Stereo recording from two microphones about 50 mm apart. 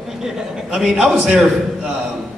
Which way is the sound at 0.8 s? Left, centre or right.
Centre.